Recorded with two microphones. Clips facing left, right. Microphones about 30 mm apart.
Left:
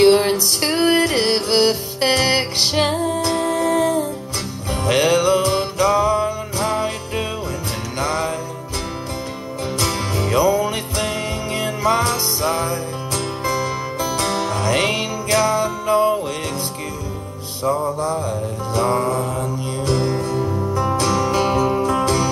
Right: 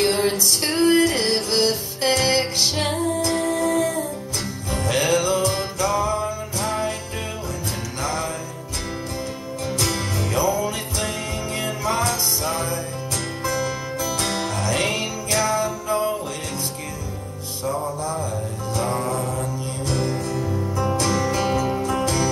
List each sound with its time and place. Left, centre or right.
0.2 s music: left
9.8 s music: left
17.8 s mantra: left
18.8 s music: left
20.9 s music: centre